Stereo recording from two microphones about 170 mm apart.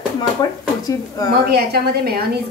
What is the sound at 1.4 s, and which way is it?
Speech, 65° right (ahead or behind).